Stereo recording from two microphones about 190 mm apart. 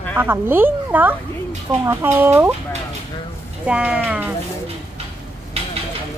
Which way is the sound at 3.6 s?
5° right (ahead or behind).